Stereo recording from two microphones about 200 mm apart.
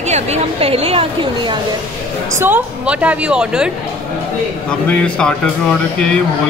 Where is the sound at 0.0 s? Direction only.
35° right (ahead or behind).